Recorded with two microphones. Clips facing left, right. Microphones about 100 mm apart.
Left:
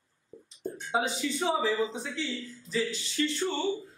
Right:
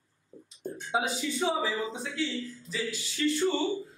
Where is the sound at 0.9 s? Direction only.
Centre (ahead or behind).